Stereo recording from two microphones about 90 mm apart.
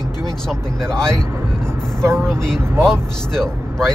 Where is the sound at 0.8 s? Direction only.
30° right (ahead or behind).